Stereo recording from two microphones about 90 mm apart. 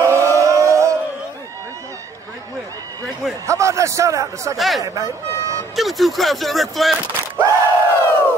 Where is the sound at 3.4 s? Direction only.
35° right (ahead or behind).